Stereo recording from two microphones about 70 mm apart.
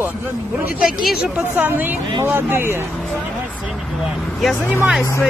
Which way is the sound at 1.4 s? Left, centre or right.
Right.